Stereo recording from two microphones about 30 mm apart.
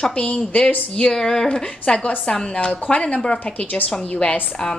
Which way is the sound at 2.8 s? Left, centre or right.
Left.